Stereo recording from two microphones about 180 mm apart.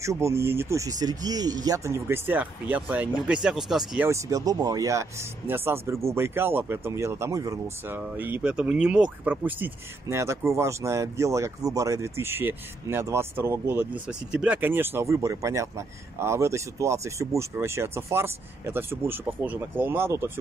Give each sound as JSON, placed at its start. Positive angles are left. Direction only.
{"t": 0.0, "sound": "speech", "side_deg": -15}
{"t": 4.1, "sound": "speech", "side_deg": -20}